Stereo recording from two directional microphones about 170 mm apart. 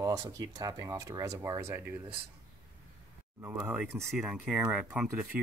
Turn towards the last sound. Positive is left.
turn(degrees=-5)  # may be behind; listen again after turning